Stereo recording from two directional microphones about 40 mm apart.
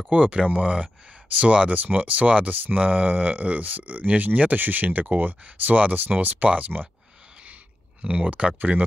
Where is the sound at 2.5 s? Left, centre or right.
Right.